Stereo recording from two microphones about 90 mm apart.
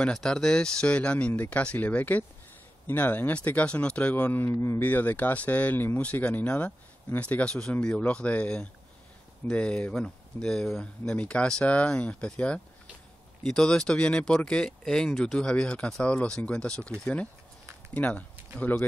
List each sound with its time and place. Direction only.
0.0 s speech: 5° left (ahead or behind)